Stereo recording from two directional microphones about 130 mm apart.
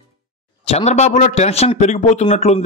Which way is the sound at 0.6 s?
55° left (ahead or behind).